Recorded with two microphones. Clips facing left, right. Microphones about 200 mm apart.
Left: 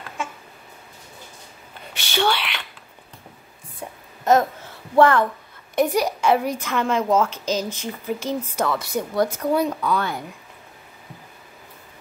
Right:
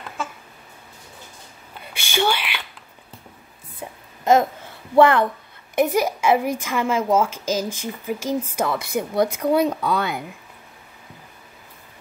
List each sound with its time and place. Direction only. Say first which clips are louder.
2.0 s a child's voice: even; 10° right (ahead or behind)
3.8 s a sound: right 1 dB; 10° right (ahead or behind)
4.9 s a child's voice: right 1 dB; 15° right (ahead or behind)